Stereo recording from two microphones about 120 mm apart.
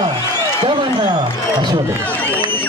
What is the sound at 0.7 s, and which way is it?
A man's voice, 40° right (ahead or behind).